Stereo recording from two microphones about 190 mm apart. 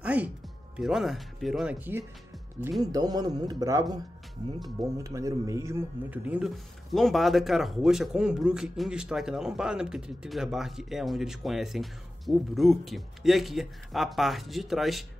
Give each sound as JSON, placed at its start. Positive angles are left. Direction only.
{"t": 0.0, "sound": "music", "side_deg": -5}
{"t": 0.7, "sound": "speech", "side_deg": 0}
{"t": 2.8, "sound": "a man's voice", "side_deg": -20}
{"t": 4.8, "sound": "speech", "side_deg": -15}